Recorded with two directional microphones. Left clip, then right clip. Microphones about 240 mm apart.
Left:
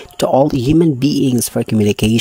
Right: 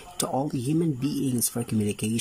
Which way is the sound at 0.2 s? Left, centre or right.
Left.